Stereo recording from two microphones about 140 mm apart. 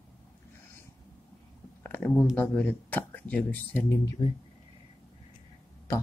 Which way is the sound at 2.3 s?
10° left (ahead or behind).